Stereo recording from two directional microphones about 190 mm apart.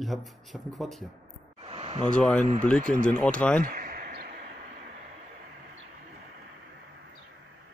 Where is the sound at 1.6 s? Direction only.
30° right (ahead or behind).